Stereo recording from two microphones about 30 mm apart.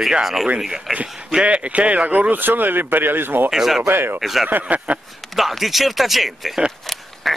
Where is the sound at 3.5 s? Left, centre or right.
Centre.